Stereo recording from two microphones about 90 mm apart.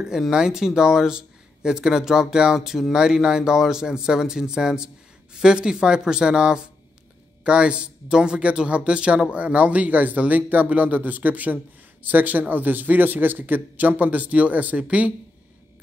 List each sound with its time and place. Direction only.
0.0 s speech: 5° right (ahead or behind)